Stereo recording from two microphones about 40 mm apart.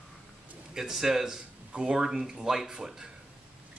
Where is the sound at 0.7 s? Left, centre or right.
Centre.